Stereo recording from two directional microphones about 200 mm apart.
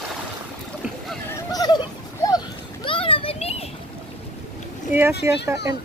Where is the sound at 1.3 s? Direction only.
20° left (ahead or behind).